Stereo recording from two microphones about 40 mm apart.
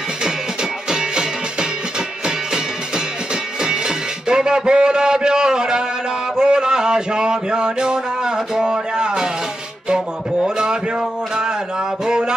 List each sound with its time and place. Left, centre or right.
0.8 s music: centre
3.6 s music: right
6.3 s a sound: centre
12.1 s music: centre